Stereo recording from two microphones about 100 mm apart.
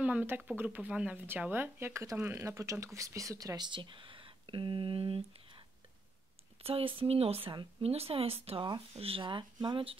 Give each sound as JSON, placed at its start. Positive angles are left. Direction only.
{"t": 0.0, "sound": "speech", "side_deg": -15}
{"t": 6.6, "sound": "speech", "side_deg": -70}